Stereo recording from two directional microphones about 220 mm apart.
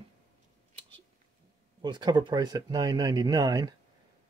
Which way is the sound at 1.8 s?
20° right (ahead or behind).